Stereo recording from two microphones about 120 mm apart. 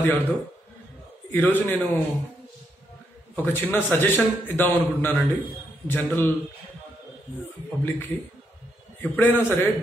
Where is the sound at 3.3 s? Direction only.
15° left (ahead or behind).